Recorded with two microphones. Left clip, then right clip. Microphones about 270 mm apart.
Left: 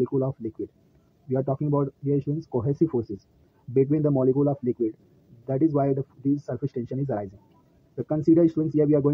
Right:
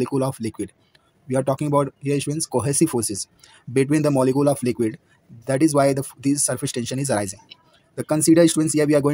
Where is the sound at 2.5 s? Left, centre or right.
Right.